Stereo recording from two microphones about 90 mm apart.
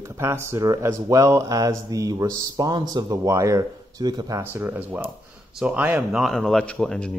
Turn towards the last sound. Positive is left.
turn(degrees=10)  # may be behind; listen again after turning